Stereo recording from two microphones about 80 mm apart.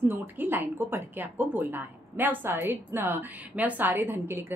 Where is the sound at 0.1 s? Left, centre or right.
Right.